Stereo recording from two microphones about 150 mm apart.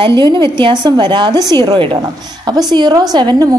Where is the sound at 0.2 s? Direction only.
30° right (ahead or behind).